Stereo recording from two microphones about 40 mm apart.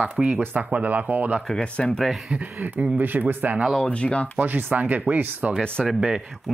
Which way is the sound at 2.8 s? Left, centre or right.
Right.